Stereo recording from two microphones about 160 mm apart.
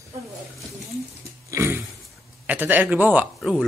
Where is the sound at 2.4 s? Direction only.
10° right (ahead or behind).